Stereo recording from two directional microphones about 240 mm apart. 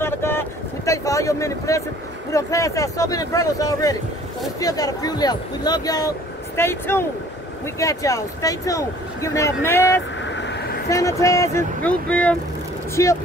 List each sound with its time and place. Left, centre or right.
0.0 s vehicle: centre
2.3 s speech: centre
10.2 s vehicle: left
10.9 s speech: centre